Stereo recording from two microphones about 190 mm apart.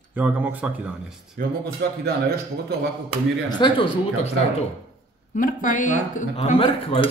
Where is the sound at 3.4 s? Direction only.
25° left (ahead or behind).